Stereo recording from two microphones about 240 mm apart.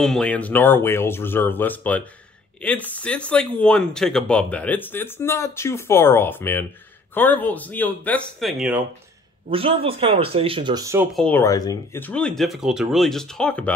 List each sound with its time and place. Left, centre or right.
0.0 s speech: centre
9.5 s speech: right
11.1 s speech: centre